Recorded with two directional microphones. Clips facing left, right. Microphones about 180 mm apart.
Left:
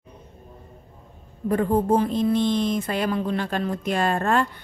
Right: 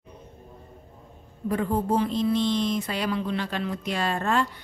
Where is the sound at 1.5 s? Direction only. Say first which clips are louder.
Left 5 dB; 50° left (ahead or behind).